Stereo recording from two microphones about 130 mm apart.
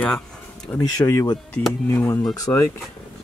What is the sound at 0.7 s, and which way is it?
Speech, 25° left (ahead or behind).